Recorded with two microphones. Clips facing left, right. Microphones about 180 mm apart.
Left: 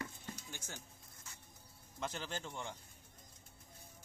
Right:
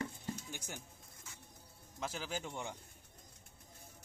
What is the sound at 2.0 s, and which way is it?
Speech, 5° right (ahead or behind).